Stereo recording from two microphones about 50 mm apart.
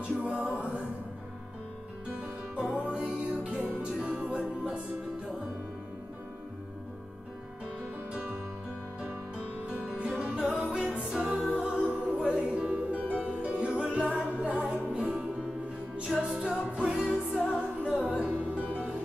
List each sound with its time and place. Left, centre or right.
0.0 s music: right
2.1 s music: right
9.7 s music: right
13.9 s a capella: centre
14.4 s music: right
16.2 s music: centre